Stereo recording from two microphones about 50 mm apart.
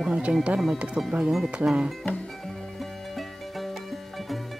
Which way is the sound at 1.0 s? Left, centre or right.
Centre.